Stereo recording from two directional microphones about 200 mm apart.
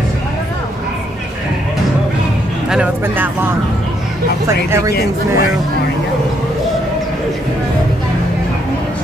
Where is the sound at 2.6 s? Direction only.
5° right (ahead or behind).